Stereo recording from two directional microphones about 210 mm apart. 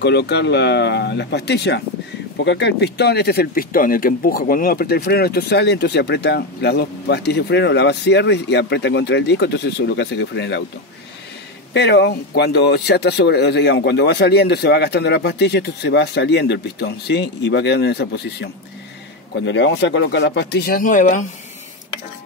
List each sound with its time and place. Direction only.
0.0 s speech: 55° left (ahead or behind)
11.7 s speech: 50° left (ahead or behind); by 21.3 s 35° left (ahead or behind)